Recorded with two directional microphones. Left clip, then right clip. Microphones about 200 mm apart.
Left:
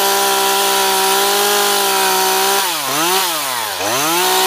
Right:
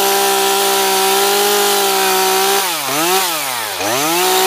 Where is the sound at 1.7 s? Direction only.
15° right (ahead or behind).